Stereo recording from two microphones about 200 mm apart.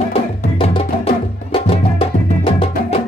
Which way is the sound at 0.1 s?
30° left (ahead or behind).